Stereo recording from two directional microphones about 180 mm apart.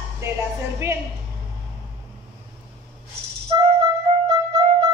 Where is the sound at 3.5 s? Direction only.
25° right (ahead or behind).